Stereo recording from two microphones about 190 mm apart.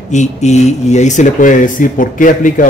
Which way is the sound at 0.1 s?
40° left (ahead or behind).